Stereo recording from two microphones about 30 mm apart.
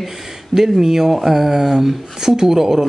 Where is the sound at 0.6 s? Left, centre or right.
Centre.